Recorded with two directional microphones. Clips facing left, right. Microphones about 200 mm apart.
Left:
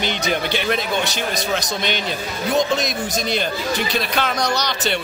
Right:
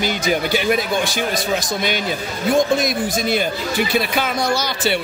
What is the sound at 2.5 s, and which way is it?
Speech, 50° right (ahead or behind).